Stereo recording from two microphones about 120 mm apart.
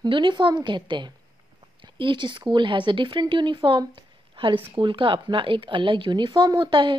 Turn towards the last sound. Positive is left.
turn(degrees=-40)  # may be behind; listen again after turning